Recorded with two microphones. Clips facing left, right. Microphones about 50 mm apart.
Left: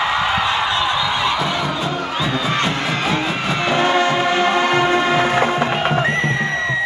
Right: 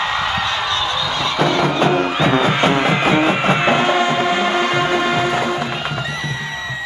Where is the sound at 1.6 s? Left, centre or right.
Right.